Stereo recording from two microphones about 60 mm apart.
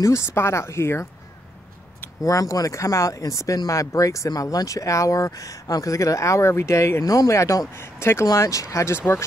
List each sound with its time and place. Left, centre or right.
0.0 s speech: left
2.2 s speech: left
7.0 s speech: left
7.7 s speech: left
8.4 s speech: left